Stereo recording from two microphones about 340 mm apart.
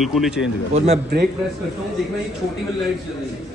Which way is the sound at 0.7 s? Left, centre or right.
Centre.